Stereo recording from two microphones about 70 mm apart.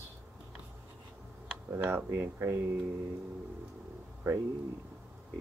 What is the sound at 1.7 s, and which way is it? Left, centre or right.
Speech, right.